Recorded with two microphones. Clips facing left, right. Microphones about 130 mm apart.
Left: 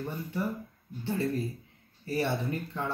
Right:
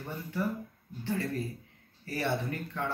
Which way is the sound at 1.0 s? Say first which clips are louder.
Left 3 dB; 25° left (ahead or behind).